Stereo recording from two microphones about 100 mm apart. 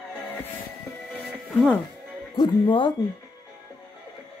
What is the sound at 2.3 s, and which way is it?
Speech, 50° left (ahead or behind).